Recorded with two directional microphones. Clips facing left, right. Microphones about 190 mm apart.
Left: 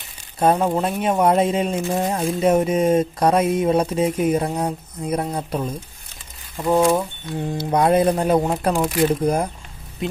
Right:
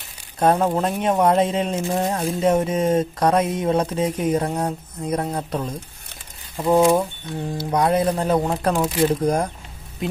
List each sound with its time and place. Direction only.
0.4 s speech: 5° left (ahead or behind)
6.5 s speech: 5° right (ahead or behind)
7.5 s speech: 20° left (ahead or behind)